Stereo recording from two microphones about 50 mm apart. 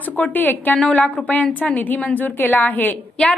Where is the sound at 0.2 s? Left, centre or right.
Left.